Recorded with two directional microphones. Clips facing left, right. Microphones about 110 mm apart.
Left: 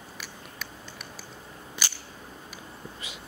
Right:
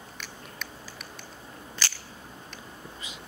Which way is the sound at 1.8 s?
15° left (ahead or behind).